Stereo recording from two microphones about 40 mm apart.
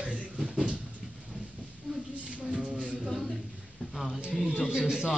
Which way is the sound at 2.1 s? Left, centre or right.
Right.